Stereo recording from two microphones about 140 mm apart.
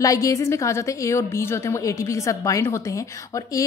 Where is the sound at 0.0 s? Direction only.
25° left (ahead or behind).